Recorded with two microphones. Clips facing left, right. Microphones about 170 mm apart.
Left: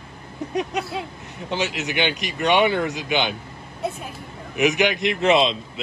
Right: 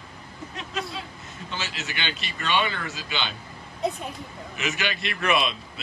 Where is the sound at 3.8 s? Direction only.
5° left (ahead or behind).